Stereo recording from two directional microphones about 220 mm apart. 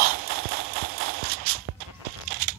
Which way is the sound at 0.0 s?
45° right (ahead or behind).